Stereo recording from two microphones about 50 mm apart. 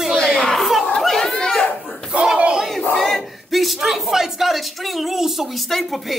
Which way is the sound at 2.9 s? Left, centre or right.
Centre.